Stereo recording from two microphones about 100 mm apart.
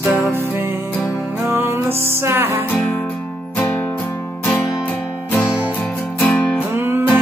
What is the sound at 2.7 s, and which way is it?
Music, 10° left (ahead or behind).